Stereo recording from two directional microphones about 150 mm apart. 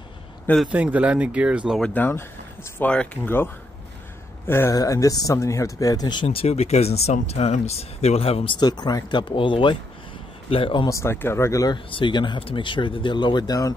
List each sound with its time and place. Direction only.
0.7 s speech: 10° right (ahead or behind)
1.8 s speech: 10° left (ahead or behind)
4.5 s speech: 20° left (ahead or behind)
6.2 s speech: 40° left (ahead or behind)
8.5 s speech: 30° left (ahead or behind)
10.9 s speech: 20° left (ahead or behind)